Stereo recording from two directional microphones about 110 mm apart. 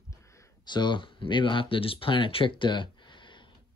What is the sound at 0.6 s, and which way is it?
Speech, 45° left (ahead or behind).